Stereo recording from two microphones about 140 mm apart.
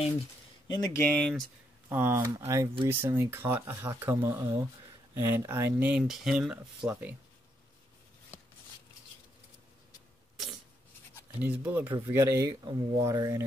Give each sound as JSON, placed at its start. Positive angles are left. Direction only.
{"t": 0.7, "sound": "speech", "side_deg": 25}
{"t": 1.0, "sound": "speech", "side_deg": 5}
{"t": 1.9, "sound": "speech", "side_deg": -15}
{"t": 11.4, "sound": "speech", "side_deg": -15}